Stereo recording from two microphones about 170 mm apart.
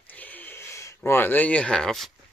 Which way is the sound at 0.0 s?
10° left (ahead or behind).